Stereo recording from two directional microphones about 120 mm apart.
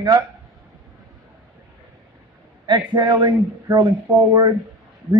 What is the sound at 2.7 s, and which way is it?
A man's voice, 40° right (ahead or behind).